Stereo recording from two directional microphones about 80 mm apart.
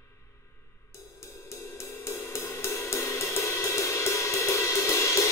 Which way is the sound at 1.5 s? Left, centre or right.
Left.